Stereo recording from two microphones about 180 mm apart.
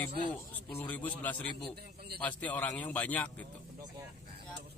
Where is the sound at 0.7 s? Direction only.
10° left (ahead or behind).